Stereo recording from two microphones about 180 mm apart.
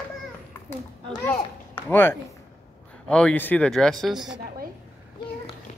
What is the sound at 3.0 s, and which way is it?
Speech, 5° left (ahead or behind).